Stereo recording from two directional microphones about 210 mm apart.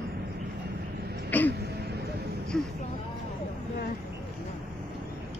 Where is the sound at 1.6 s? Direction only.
50° right (ahead or behind).